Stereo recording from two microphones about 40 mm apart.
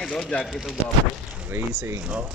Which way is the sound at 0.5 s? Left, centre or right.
Centre.